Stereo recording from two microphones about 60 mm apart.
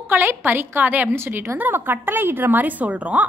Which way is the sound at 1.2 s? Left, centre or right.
Right.